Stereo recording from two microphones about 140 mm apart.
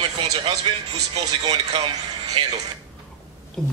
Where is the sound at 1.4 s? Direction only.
50° right (ahead or behind).